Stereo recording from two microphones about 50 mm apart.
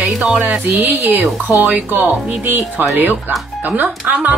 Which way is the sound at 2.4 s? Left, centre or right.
Right.